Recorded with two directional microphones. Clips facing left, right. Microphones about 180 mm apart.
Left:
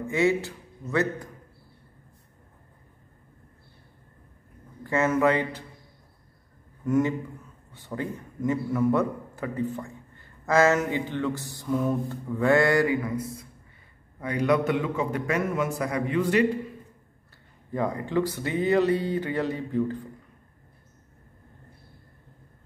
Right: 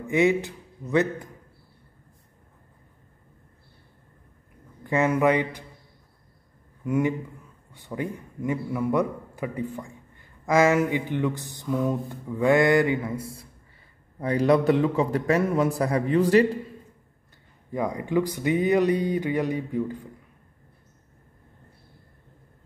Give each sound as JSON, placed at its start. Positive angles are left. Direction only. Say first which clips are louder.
{"t": 0.0, "sound": "a man's voice", "louder": "right 2 dB", "side_deg": -20}
{"t": 4.8, "sound": "speech", "louder": "right 1 dB", "side_deg": -15}
{"t": 6.8, "sound": "a man's voice", "louder": "left 1 dB", "side_deg": -10}
{"t": 17.7, "sound": "speech", "louder": "right 1 dB", "side_deg": -15}